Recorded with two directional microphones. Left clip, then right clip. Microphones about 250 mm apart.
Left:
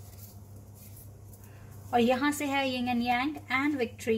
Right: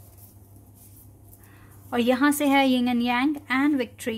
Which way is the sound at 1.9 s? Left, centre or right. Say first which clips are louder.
Right 4 dB; right.